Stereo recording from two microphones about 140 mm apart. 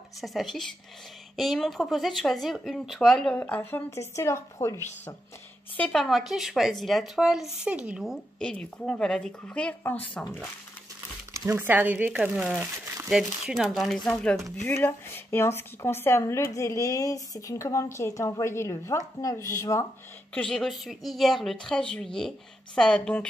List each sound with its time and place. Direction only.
0.2 s speech: centre (ahead or behind); by 5.1 s 15° left (ahead or behind)
5.8 s speech: 5° left (ahead or behind)
11.3 s speech: 15° right (ahead or behind); by 14.1 s centre (ahead or behind)
14.8 s speech: 15° left (ahead or behind)
20.3 s speech: 5° left (ahead or behind)